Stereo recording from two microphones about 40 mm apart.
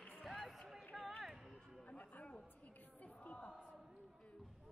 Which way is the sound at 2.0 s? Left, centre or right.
Left.